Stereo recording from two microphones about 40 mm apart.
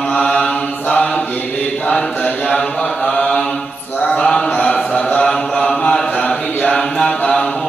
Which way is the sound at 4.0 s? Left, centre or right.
Left.